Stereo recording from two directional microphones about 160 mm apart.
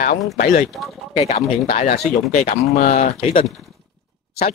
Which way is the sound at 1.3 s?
45° left (ahead or behind).